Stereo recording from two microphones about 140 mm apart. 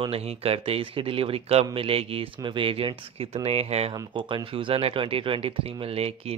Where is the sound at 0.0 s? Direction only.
45° right (ahead or behind).